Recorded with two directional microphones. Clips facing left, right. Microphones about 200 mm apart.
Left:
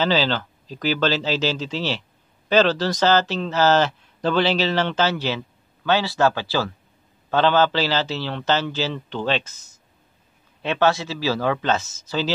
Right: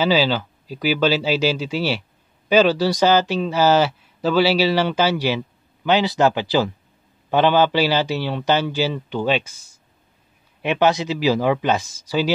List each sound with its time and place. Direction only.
0.0 s speech: 10° right (ahead or behind)